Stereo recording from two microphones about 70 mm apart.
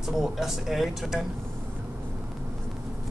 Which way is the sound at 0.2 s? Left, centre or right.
Centre.